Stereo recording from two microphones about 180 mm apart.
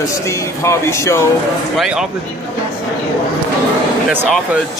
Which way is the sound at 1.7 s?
Centre (ahead or behind).